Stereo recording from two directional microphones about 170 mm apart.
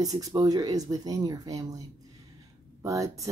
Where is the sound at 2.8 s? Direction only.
20° right (ahead or behind).